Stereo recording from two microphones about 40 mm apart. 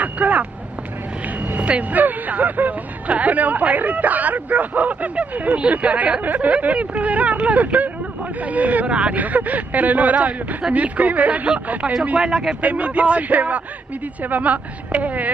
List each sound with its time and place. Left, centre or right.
0.0 s vehicle: right
1.2 s a sound: right
1.7 s speech: right
6.2 s speech: right
6.5 s speech: right
12.2 s speech: centre
12.6 s speech: right